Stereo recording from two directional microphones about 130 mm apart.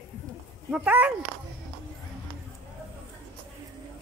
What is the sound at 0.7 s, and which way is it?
Speech, 10° right (ahead or behind).